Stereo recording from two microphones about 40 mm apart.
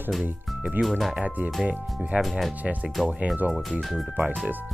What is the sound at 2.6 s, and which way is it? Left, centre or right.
Speech, right.